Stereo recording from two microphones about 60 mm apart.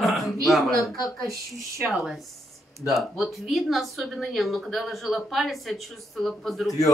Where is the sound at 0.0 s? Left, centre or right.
Centre.